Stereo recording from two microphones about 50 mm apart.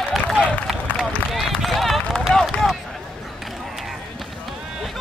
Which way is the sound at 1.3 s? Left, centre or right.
Centre.